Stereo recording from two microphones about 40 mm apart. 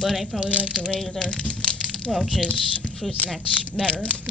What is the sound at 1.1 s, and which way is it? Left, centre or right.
Speech, centre.